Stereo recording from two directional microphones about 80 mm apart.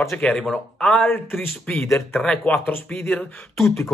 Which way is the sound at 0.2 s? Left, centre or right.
Centre.